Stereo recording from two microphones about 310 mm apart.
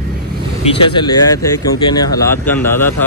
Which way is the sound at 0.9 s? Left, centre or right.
Centre.